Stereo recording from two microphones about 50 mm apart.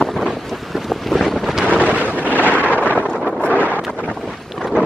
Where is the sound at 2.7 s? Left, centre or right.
Left.